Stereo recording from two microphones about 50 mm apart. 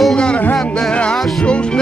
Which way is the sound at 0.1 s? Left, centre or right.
Centre.